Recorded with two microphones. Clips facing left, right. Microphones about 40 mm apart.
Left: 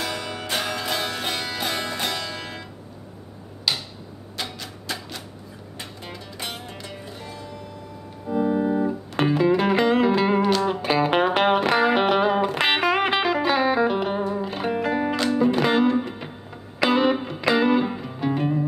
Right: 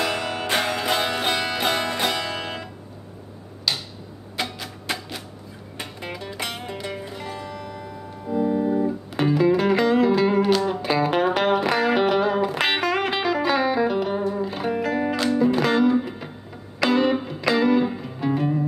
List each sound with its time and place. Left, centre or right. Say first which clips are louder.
0.0 s music: right 4 dB; right
0.6 s music: right 3 dB; right
1.7 s music: right 4 dB; centre
2.1 s music: right 4 dB; right
3.7 s tick-tock: even; centre
5.8 s music: right 5 dB; right
6.9 s music: right 5 dB; right
8.3 s music: even; centre
12.4 s music: left 1 dB; centre
18.0 s music: right 1 dB; centre